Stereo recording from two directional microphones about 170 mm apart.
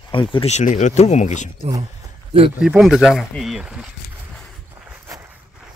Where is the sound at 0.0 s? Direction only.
30° left (ahead or behind); by 1.5 s 45° left (ahead or behind).